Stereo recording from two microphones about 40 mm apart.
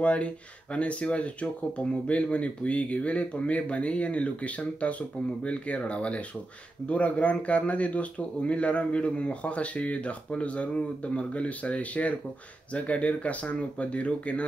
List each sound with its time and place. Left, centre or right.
0.0 s a man's voice: left